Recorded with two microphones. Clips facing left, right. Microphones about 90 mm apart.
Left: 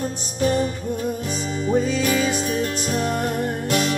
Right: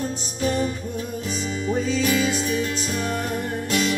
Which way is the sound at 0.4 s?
45° left (ahead or behind).